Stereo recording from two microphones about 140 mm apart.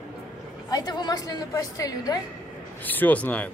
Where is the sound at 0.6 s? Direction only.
30° left (ahead or behind).